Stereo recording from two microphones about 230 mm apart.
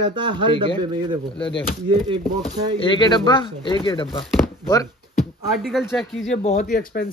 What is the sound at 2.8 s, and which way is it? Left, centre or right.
Speech, centre.